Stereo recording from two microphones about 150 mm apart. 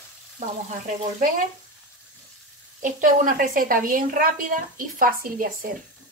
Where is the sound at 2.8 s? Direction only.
60° right (ahead or behind).